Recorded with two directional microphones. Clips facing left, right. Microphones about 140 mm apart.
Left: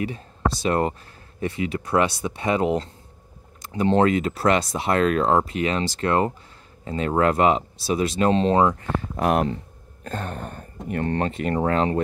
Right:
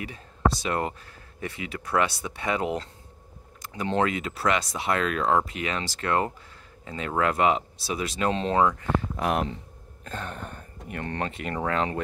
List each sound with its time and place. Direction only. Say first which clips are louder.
0.0 s speech: left 1 dB; 30° left (ahead or behind)
9.1 s speech: left 5 dB; 45° left (ahead or behind)